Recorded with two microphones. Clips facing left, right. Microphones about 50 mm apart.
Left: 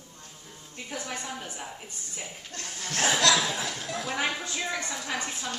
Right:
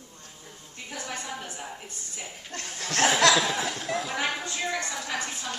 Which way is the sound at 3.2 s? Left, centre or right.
Centre.